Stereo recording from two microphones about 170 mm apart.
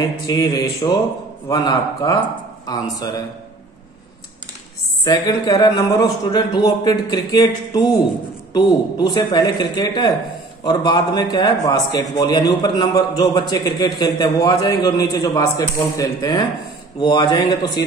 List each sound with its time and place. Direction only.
0.0 s a man's voice: 20° left (ahead or behind)
5.0 s a man's voice: 25° left (ahead or behind)